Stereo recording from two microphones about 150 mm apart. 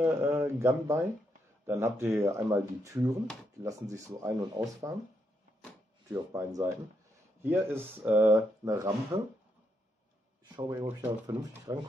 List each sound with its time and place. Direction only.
0.0 s speech: 15° right (ahead or behind)
6.1 s speech: 20° right (ahead or behind)
10.4 s speech: 30° right (ahead or behind)